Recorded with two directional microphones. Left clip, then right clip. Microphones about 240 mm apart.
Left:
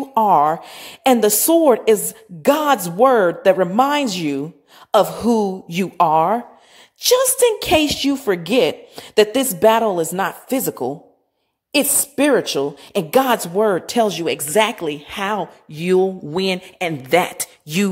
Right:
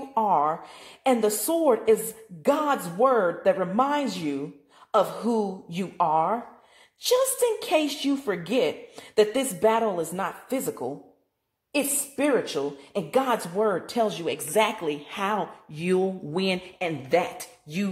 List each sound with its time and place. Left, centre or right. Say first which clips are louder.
0.1 s a woman's voice: left 9 dB; left